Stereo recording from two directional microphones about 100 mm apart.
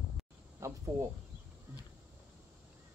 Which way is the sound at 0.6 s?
30° right (ahead or behind).